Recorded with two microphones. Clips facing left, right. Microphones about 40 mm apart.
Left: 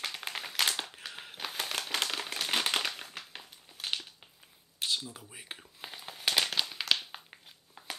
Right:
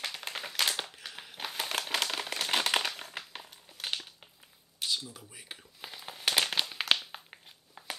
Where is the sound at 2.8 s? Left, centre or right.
Centre.